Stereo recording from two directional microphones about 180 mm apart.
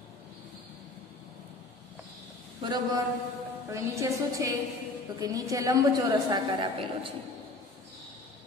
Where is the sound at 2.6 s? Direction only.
20° right (ahead or behind).